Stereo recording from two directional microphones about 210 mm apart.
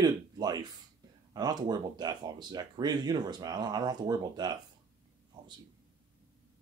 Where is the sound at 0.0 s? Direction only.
20° right (ahead or behind).